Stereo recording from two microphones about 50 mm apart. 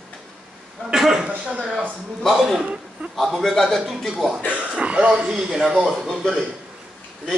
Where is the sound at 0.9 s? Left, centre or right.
Centre.